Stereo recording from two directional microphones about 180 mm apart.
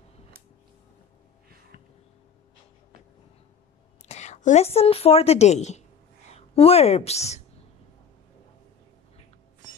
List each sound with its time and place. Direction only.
4.1 s a woman's voice: 40° left (ahead or behind)